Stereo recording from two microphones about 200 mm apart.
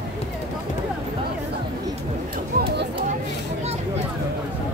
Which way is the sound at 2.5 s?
50° right (ahead or behind).